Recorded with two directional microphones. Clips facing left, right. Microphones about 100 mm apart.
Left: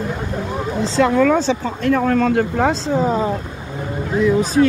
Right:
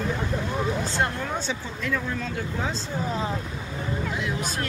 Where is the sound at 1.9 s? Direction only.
75° left (ahead or behind).